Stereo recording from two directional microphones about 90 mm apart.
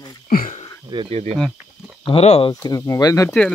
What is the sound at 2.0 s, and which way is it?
Speech, 90° left.